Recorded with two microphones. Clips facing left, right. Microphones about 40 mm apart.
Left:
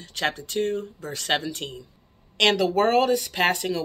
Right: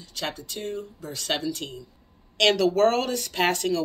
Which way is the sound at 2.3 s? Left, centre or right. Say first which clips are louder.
Even; centre.